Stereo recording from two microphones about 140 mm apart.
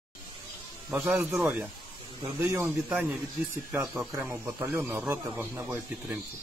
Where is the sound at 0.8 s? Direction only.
15° right (ahead or behind).